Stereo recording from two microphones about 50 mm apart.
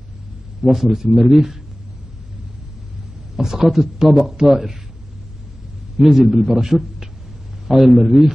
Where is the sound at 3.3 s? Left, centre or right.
Centre.